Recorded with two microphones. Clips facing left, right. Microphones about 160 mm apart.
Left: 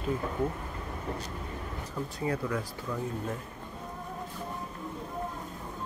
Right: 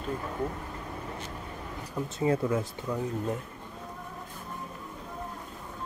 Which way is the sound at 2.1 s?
25° right (ahead or behind).